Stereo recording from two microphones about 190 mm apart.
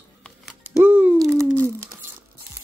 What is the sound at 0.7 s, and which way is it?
Music, 10° right (ahead or behind).